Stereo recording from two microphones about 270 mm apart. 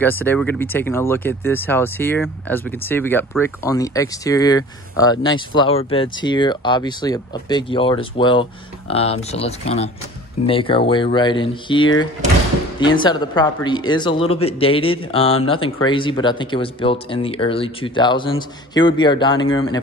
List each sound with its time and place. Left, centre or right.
0.0 s speech: centre